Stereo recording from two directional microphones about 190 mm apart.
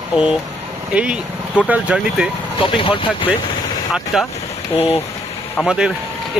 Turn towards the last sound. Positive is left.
turn(degrees=-5)  # may be behind; listen again after turning